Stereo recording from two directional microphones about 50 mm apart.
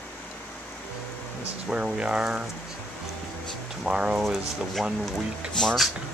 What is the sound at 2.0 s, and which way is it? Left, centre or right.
Speech, right.